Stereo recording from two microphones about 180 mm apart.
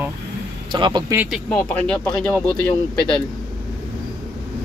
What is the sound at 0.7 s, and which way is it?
Speech, 25° right (ahead or behind).